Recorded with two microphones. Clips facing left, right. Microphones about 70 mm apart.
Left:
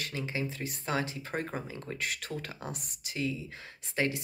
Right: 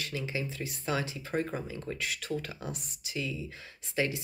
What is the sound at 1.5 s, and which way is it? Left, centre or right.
Speech, left.